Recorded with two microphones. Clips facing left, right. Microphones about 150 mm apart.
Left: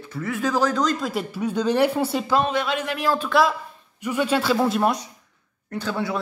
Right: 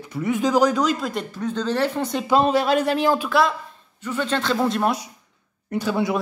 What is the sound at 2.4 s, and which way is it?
Speech, 40° right (ahead or behind).